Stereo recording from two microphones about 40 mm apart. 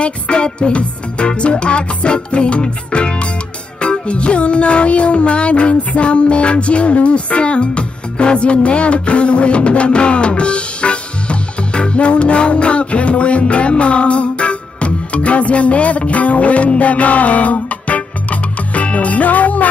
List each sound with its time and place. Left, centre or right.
0.0 s music: left